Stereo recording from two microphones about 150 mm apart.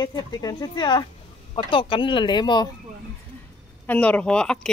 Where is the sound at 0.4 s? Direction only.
25° left (ahead or behind).